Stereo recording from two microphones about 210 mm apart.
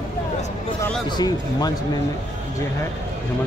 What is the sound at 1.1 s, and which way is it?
Speech, 20° left (ahead or behind).